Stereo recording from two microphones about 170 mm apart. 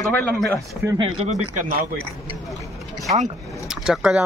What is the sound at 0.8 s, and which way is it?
Speech, 25° right (ahead or behind).